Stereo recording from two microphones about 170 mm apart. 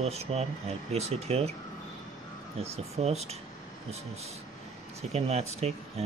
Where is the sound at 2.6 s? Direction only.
40° right (ahead or behind).